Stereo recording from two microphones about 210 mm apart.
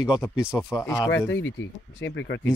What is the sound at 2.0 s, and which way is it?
Speech, 60° left (ahead or behind).